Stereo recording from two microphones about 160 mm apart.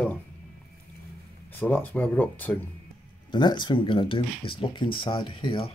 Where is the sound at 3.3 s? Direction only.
30° left (ahead or behind).